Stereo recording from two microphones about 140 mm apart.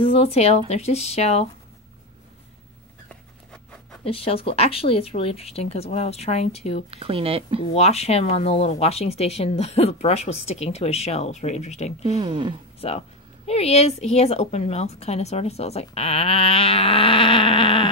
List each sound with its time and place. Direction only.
0.0 s speech: 45° left (ahead or behind)
3.1 s a sound: 5° left (ahead or behind)
4.0 s speech: 40° left (ahead or behind)
6.9 s speech: 40° right (ahead or behind)
7.7 s speech: 50° left (ahead or behind)
12.2 s speech: 35° right (ahead or behind)
12.8 s speech: 45° left (ahead or behind)